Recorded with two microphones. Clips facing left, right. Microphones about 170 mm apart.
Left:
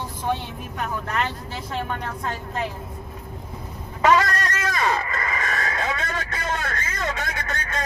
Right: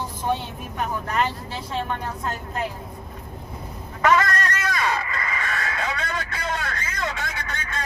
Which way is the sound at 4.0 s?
30° left (ahead or behind).